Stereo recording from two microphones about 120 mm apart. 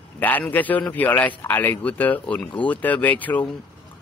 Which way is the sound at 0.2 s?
15° left (ahead or behind).